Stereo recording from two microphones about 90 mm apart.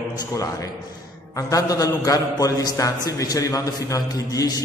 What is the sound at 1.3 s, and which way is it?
Mantra, 40° left (ahead or behind).